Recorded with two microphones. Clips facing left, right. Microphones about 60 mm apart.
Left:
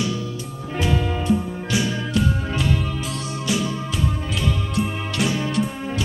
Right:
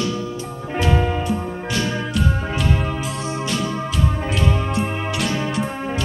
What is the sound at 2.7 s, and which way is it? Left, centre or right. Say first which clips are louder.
Music: right 2 dB; right.